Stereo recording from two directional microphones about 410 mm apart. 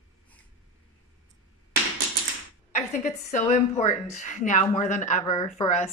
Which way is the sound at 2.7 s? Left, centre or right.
Centre.